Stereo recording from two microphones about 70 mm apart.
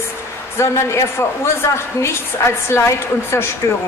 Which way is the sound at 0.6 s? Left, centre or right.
Left.